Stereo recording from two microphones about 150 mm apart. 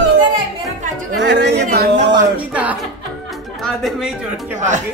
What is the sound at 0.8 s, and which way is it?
Speech, 65° right (ahead or behind).